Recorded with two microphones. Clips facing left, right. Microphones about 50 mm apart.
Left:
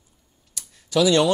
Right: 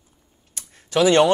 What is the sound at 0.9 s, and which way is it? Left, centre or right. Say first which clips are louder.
Speech: right 2 dB; right.